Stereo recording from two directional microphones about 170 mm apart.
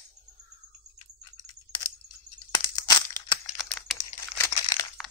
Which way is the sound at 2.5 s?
20° left (ahead or behind).